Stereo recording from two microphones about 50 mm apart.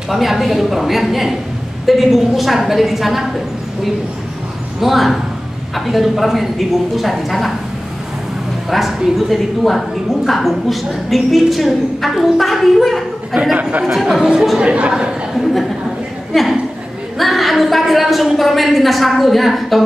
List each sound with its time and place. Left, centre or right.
0.1 s a woman's voice: centre
4.7 s a woman's voice: centre
8.6 s a woman's voice: centre
13.3 s speech: centre
13.6 s speech: right
14.0 s speech: centre
14.6 s a woman's voice: right
15.3 s a sound: centre
16.3 s a woman's voice: centre